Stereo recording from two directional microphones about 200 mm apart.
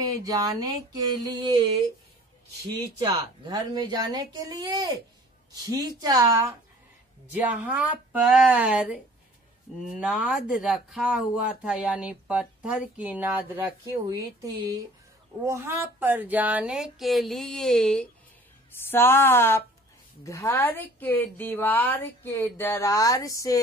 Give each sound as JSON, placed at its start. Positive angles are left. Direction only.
{"t": 0.0, "sound": "speech", "side_deg": -20}
{"t": 3.0, "sound": "a woman's voice", "side_deg": -20}